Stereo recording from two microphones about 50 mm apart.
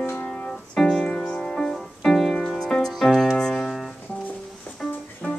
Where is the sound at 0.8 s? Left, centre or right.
Centre.